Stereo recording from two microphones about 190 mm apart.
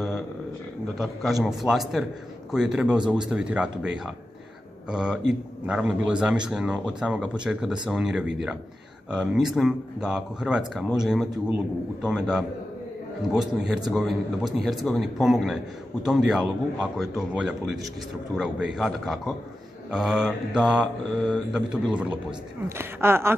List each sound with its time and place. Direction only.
0.9 s speech: centre (ahead or behind)
18.8 s speech: centre (ahead or behind)
21.2 s speech: 5° left (ahead or behind)
21.5 s speech: 5° right (ahead or behind)